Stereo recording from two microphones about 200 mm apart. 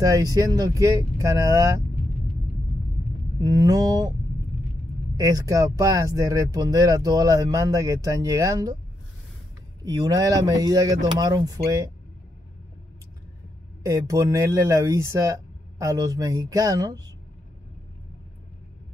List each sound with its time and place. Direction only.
0.0 s speech: 20° right (ahead or behind)
3.3 s speech: 20° right (ahead or behind)
5.1 s speech: 20° right (ahead or behind)
9.8 s speech: 20° right (ahead or behind)
13.8 s speech: 15° right (ahead or behind)